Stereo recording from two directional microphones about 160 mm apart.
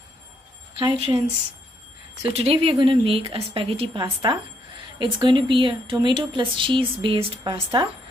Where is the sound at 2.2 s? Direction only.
35° right (ahead or behind).